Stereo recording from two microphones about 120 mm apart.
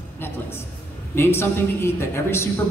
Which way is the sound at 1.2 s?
20° left (ahead or behind).